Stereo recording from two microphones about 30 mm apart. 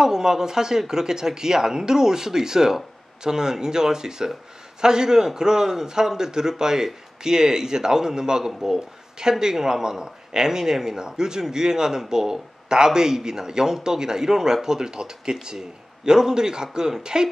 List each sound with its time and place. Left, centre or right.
0.0 s speech: centre